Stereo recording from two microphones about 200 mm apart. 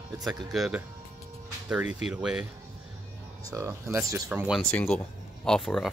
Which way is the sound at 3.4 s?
15° right (ahead or behind).